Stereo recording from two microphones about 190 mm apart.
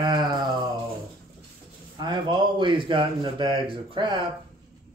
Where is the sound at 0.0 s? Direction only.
25° right (ahead or behind).